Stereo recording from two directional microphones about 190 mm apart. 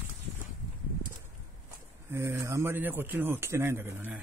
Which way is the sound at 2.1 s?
15° right (ahead or behind).